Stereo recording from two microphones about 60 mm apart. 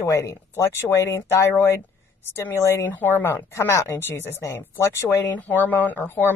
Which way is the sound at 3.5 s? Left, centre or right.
Left.